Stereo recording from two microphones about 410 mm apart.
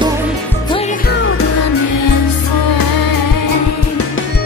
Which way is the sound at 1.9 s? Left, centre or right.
Left.